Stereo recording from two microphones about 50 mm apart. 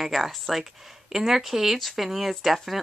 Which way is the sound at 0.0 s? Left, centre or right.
Centre.